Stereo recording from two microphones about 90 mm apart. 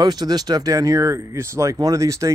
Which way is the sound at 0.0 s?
45° right (ahead or behind).